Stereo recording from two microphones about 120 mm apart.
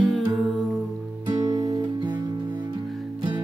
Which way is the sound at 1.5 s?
35° right (ahead or behind).